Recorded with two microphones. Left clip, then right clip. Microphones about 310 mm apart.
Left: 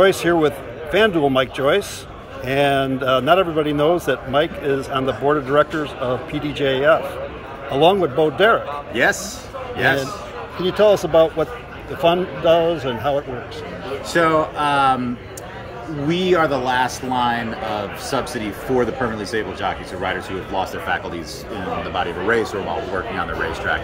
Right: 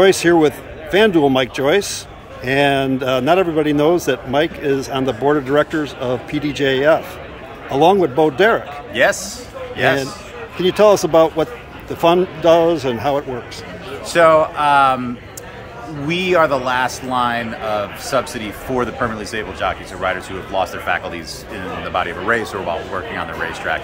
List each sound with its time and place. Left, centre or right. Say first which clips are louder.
0.0 s a man's voice: right 3 dB; centre
7.7 s speech: right 2 dB; right
8.4 s a man's voice: right 1 dB; centre
16.1 s a man's voice: right 3 dB; centre